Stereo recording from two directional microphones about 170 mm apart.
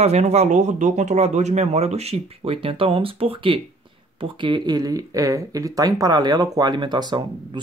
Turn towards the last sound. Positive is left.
turn(degrees=-25)  # may be behind; listen again after turning